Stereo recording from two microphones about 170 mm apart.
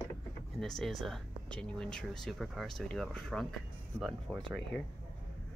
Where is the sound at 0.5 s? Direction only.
Centre (ahead or behind).